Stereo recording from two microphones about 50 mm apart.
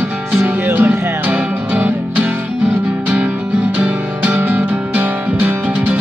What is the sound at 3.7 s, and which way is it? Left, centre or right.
Music, right.